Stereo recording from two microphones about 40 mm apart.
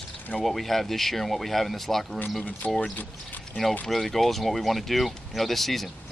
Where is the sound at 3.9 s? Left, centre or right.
Centre.